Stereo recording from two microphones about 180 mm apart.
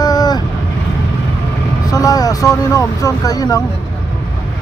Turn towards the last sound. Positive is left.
turn(degrees=20)  # may be behind; listen again after turning